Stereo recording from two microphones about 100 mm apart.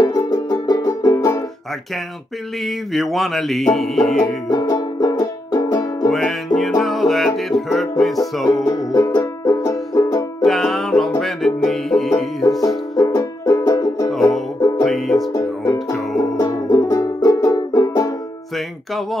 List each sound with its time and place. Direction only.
0.0 s music: 40° left (ahead or behind)
2.6 s music: centre (ahead or behind)
4.5 s music: 35° left (ahead or behind)
6.0 s music: centre (ahead or behind)
8.6 s music: 35° left (ahead or behind)
10.4 s music: centre (ahead or behind)
12.6 s music: 35° left (ahead or behind)
14.9 s music: centre (ahead or behind)
15.3 s music: 35° left (ahead or behind)